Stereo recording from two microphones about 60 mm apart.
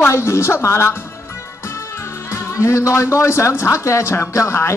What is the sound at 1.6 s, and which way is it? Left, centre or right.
Music, left.